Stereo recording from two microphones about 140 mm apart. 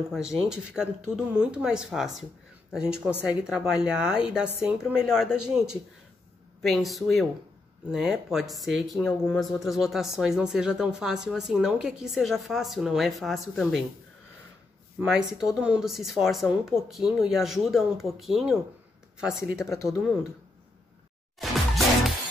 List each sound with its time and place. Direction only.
0.1 s a woman's voice: 5° right (ahead or behind)
15.0 s speech: 5° right (ahead or behind)
19.6 s speech: 20° left (ahead or behind)
21.4 s music: centre (ahead or behind)